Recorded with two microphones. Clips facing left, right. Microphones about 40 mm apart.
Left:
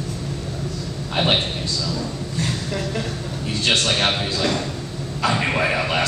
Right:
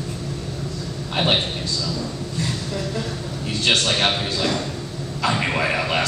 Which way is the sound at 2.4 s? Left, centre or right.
Left.